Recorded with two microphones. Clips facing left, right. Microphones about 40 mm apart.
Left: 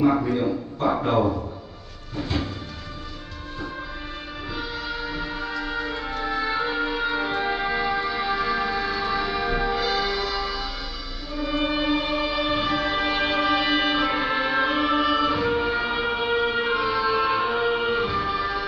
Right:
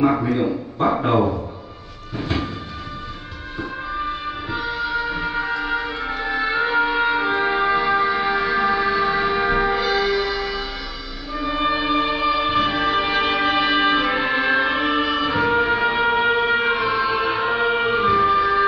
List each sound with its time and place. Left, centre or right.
0.0 s a man's voice: right
5.1 s music: right